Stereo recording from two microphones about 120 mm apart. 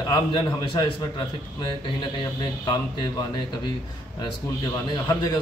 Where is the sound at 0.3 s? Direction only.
40° left (ahead or behind).